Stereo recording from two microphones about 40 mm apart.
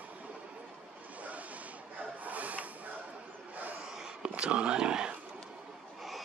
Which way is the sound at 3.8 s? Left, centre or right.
Centre.